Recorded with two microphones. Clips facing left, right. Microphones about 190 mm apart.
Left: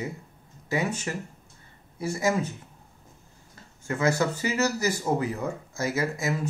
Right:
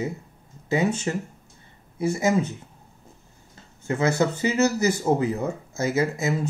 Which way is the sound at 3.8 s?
25° right (ahead or behind).